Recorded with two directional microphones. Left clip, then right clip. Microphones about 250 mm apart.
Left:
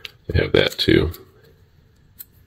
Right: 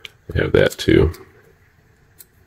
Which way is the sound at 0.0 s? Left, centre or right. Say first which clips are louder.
Right 1 dB; centre.